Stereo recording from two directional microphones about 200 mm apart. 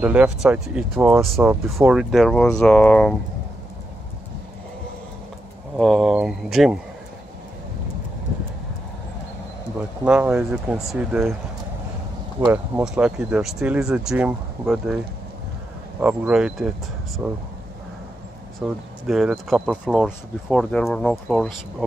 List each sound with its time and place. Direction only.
0.0 s speech: 5° right (ahead or behind)
5.8 s speech: centre (ahead or behind)
10.0 s speech: 5° right (ahead or behind)
12.4 s speech: 5° right (ahead or behind)
16.0 s speech: 5° right (ahead or behind)
18.6 s speech: 5° right (ahead or behind)